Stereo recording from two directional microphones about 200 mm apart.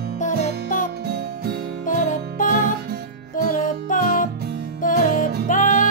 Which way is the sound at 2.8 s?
50° right (ahead or behind).